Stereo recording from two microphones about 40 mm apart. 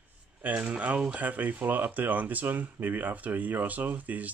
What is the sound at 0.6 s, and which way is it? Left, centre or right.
Speech, right.